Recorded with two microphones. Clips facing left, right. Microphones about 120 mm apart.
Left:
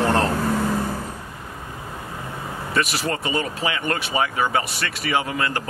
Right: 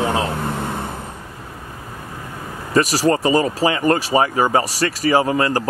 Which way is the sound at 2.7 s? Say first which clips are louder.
Right 8 dB; 35° right (ahead or behind).